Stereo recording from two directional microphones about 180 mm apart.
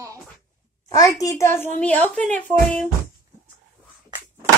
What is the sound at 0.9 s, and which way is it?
A child's voice, 15° left (ahead or behind).